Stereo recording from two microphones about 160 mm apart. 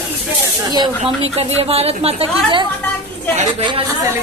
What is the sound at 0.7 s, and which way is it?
A woman's voice, 30° right (ahead or behind).